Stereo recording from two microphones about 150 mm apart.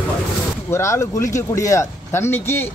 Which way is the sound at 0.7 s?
20° left (ahead or behind).